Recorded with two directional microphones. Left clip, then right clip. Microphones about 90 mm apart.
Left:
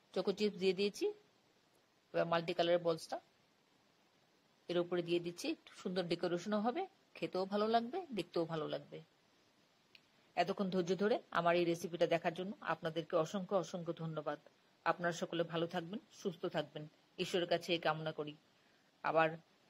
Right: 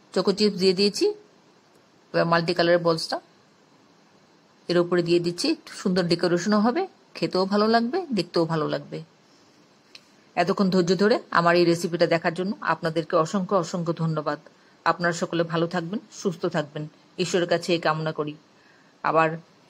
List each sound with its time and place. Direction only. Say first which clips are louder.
0.1 s speech: right 15 dB; 30° left (ahead or behind)
4.6 s speech: right 15 dB; 30° left (ahead or behind)